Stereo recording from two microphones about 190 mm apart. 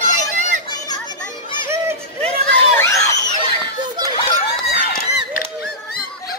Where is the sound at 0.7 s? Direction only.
20° left (ahead or behind).